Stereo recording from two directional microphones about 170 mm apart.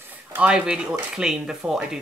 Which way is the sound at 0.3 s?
5° right (ahead or behind).